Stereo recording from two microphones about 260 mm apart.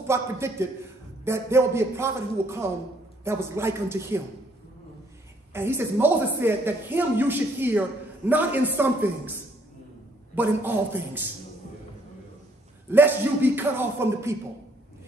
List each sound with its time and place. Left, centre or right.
0.0 s a woman's voice: centre
5.5 s a woman's voice: centre
10.3 s a woman's voice: centre
12.9 s a woman's voice: centre